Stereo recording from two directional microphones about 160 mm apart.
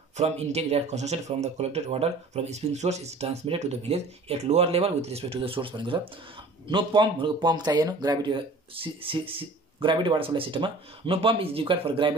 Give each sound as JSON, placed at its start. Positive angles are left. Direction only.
{"t": 0.2, "sound": "speech", "side_deg": -40}